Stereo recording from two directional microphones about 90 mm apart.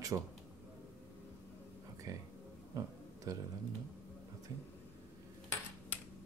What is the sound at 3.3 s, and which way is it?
Speech, 40° right (ahead or behind).